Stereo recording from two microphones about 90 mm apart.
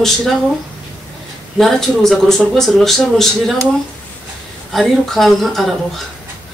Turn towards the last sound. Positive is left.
turn(degrees=0)  # may be behind; listen again after turning